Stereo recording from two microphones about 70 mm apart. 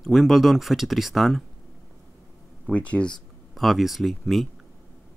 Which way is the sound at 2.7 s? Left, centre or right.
Centre.